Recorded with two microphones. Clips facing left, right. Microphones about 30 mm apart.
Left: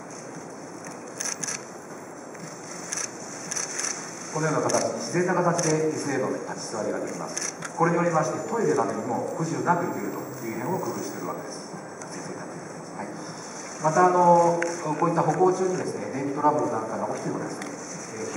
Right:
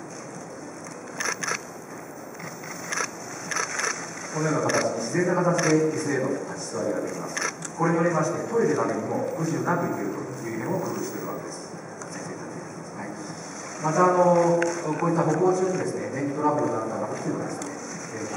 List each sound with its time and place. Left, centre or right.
1.1 s crushing: right
2.9 s skateboard: right
4.3 s a man's voice: centre
13.7 s a man's voice: centre
17.6 s a sound: centre